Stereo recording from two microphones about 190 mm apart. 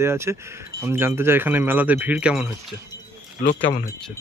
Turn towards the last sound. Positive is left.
turn(degrees=45)  # may be behind; listen again after turning